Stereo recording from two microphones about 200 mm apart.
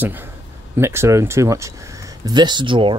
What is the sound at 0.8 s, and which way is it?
Speech, 15° right (ahead or behind).